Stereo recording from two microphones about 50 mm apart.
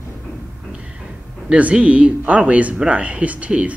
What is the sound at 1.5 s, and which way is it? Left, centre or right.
Speech, right.